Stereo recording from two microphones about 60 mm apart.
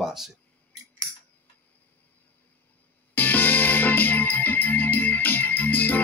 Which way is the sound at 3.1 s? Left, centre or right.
Left.